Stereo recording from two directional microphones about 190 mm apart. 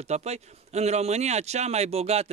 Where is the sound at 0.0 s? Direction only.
35° right (ahead or behind).